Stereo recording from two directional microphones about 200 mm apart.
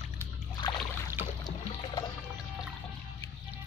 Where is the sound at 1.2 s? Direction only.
10° right (ahead or behind).